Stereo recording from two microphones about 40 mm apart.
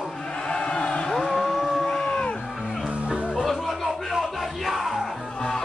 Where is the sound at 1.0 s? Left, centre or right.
Centre.